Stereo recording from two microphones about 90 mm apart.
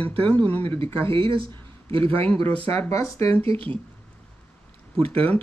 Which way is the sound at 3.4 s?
90° right.